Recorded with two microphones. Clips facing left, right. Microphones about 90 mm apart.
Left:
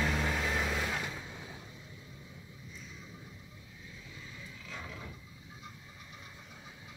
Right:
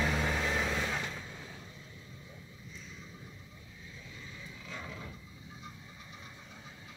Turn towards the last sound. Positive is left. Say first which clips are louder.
# right 1 dB
turn(degrees=0)  # may be behind; listen again after turning